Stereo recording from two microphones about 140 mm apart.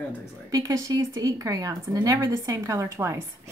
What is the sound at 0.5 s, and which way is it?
Speech, 25° right (ahead or behind).